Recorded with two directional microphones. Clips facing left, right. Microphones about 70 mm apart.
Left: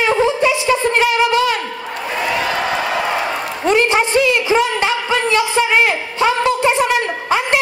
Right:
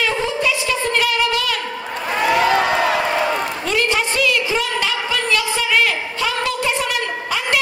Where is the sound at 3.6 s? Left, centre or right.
Left.